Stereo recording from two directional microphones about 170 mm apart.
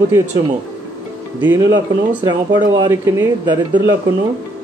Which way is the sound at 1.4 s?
20° right (ahead or behind).